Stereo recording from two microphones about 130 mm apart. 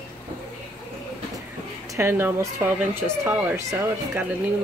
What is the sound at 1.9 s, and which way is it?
Speech, 20° right (ahead or behind).